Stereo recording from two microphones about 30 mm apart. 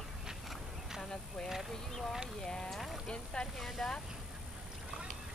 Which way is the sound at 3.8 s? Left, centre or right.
Centre.